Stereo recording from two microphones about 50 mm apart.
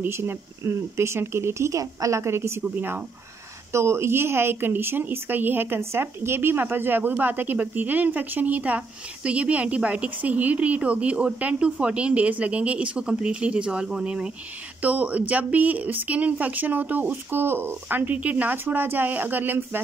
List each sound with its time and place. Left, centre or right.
0.1 s speech: right
2.7 s speech: right
3.7 s speech: right
5.8 s speech: right